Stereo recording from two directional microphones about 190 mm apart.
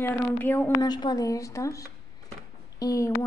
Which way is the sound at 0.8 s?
20° left (ahead or behind).